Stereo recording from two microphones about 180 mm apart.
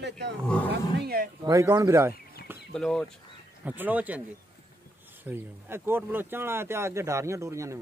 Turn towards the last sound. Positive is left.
turn(degrees=-15)  # may be behind; listen again after turning